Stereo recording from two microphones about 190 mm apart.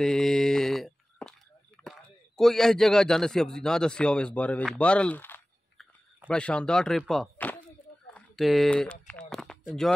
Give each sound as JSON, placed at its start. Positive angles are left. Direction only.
{"t": 0.0, "sound": "mantra", "side_deg": 5}
{"t": 1.9, "sound": "a man's voice", "side_deg": 0}
{"t": 4.7, "sound": "chewing", "side_deg": 5}
{"t": 8.1, "sound": "speech", "side_deg": 0}
{"t": 9.0, "sound": "a sound", "side_deg": 5}